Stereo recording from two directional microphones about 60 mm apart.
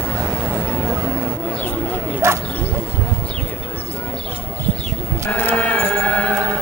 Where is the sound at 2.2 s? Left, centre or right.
Right.